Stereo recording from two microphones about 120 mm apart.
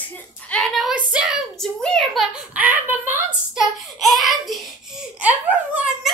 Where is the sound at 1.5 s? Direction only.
5° left (ahead or behind).